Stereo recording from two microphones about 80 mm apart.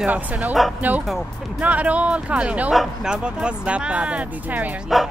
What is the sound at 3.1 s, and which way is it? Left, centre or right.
Speech, centre.